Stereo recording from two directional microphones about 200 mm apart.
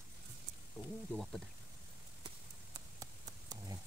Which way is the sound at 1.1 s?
Centre (ahead or behind).